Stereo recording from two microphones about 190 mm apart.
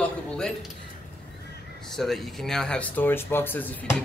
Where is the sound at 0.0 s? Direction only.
5° left (ahead or behind).